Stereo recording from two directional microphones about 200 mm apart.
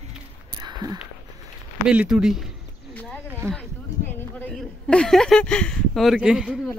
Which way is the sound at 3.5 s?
5° left (ahead or behind).